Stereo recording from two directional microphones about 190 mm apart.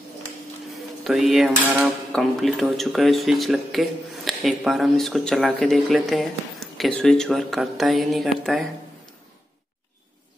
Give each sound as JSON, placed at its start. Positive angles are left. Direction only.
{"t": 1.0, "sound": "speech", "side_deg": 0}